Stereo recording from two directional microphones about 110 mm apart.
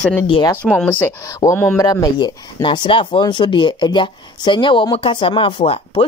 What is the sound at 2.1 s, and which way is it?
Speech, 45° left (ahead or behind).